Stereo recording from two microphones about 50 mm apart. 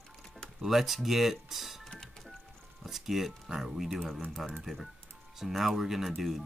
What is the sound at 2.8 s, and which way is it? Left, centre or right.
Speech, centre.